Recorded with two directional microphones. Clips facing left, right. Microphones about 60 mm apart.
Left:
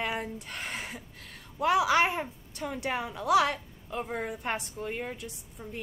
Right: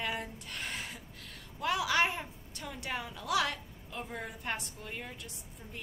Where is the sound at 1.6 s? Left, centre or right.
Centre.